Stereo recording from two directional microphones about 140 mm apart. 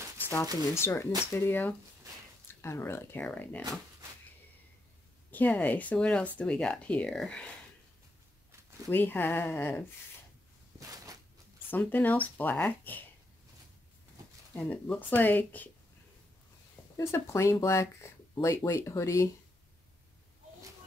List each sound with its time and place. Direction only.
0.7 s speech: 20° left (ahead or behind)
5.3 s speech: 10° left (ahead or behind)
8.5 s a sound: 20° right (ahead or behind)
8.9 s speech: 15° left (ahead or behind)
10.8 s a sound: 25° right (ahead or behind)
11.7 s speech: 10° left (ahead or behind)
14.5 s speech: 5° left (ahead or behind)
16.9 s speech: 20° left (ahead or behind)